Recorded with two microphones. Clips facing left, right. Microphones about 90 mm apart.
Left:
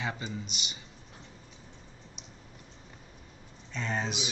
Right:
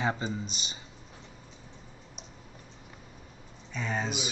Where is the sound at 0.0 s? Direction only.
35° right (ahead or behind).